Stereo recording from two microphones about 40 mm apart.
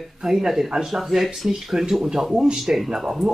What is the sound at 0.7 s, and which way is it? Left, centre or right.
Speech, centre.